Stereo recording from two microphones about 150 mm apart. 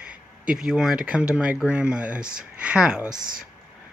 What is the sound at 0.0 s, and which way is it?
Speech, 10° right (ahead or behind).